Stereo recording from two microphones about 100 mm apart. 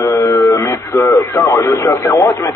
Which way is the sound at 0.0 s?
30° left (ahead or behind).